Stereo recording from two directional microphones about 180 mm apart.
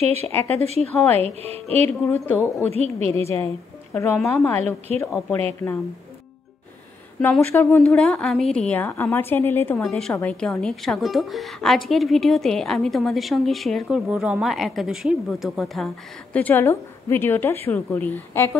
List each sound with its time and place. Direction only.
0.0 s speech: 35° right (ahead or behind)
2.0 s a woman's voice: 15° left (ahead or behind)
2.7 s speech: 35° right (ahead or behind)
3.9 s a woman's voice: 10° left (ahead or behind)
7.2 s a woman's voice: 10° left (ahead or behind)
16.3 s a woman's voice: 10° left (ahead or behind)